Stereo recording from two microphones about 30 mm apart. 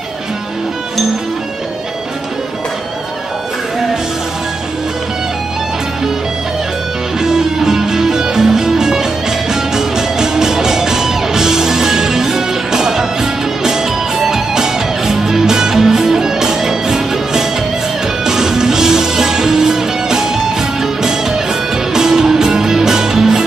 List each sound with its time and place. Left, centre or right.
7.2 s music: centre